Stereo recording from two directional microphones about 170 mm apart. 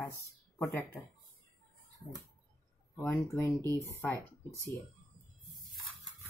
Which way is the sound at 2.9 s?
15° left (ahead or behind).